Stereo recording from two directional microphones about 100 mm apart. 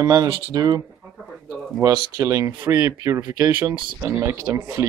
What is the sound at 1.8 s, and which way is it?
Speech, 30° right (ahead or behind).